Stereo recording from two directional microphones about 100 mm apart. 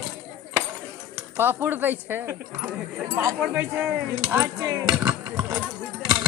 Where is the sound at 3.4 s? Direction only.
15° right (ahead or behind).